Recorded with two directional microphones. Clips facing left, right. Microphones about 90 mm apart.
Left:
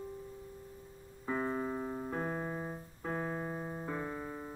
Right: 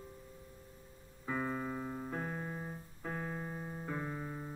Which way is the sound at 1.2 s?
15° left (ahead or behind).